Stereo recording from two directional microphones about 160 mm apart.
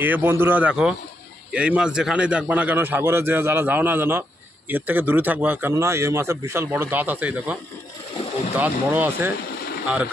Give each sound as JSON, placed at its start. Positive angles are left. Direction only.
{"t": 0.0, "sound": "speech", "side_deg": -10}
{"t": 8.5, "sound": "speech", "side_deg": -10}